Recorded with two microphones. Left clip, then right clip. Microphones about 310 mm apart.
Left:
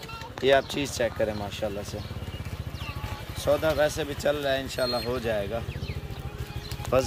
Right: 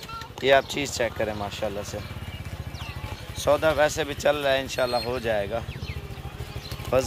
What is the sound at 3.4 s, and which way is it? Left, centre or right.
Speech, centre.